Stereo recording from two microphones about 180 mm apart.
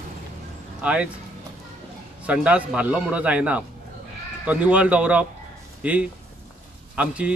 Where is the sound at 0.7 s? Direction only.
5° right (ahead or behind).